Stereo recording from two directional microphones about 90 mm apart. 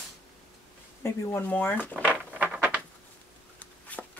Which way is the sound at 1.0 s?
30° left (ahead or behind).